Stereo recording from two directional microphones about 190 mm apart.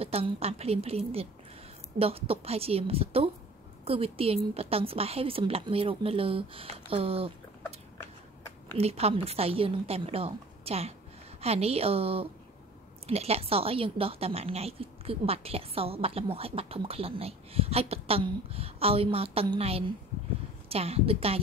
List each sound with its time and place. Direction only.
0.0 s a woman's voice: 30° right (ahead or behind)
8.7 s a woman's voice: 30° right (ahead or behind)